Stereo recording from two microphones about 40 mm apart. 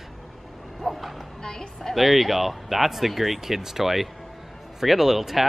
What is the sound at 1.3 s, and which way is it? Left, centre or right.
Speech, centre.